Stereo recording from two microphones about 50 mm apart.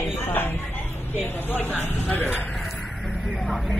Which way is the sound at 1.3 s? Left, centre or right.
Left.